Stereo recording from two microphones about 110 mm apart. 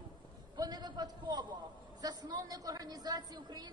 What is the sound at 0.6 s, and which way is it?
A man's voice, 40° right (ahead or behind).